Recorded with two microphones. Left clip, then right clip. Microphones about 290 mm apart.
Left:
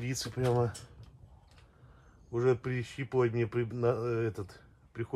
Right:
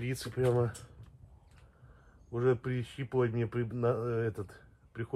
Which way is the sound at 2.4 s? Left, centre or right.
Left.